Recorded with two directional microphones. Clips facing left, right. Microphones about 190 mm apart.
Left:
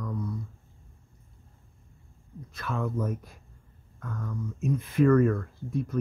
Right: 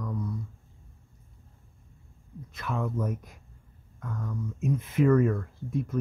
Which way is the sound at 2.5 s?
15° right (ahead or behind).